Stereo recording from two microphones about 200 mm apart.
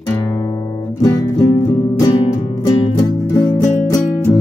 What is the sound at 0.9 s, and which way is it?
Music, 20° left (ahead or behind).